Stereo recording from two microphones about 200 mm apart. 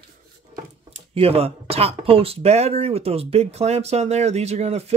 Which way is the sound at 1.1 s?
30° right (ahead or behind).